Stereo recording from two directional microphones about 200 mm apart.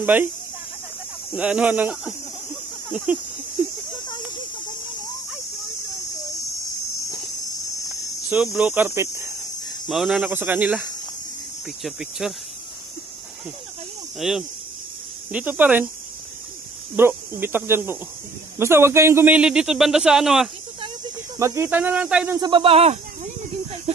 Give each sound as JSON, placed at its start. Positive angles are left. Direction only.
{"t": 0.0, "sound": "speech", "side_deg": -10}
{"t": 1.3, "sound": "speech", "side_deg": -5}
{"t": 8.3, "sound": "speech", "side_deg": -10}
{"t": 9.8, "sound": "a man's voice", "side_deg": 0}
{"t": 14.2, "sound": "a man's voice", "side_deg": 0}
{"t": 16.9, "sound": "a man's voice", "side_deg": -10}
{"t": 21.4, "sound": "speech", "side_deg": -15}
{"t": 22.4, "sound": "a sound", "side_deg": -25}